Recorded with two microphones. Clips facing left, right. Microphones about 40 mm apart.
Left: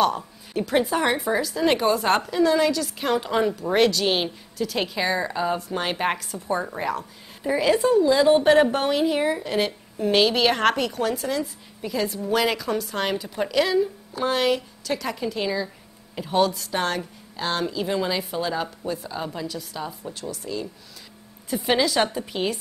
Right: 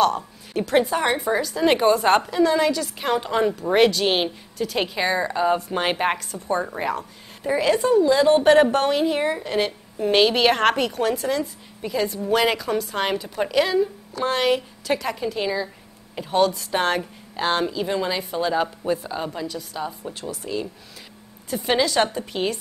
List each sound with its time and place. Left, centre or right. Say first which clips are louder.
0.0 s a sound: right 2 dB; centre
0.7 s a woman's voice: right 2 dB; centre
5.7 s speech: right 3 dB; right
5.9 s a woman's voice: right 2 dB; centre
16.7 s speech: right 3 dB; right
17.6 s a woman's voice: right 1 dB; centre
20.1 s speech: right 2 dB; right
21.5 s a woman's voice: even; centre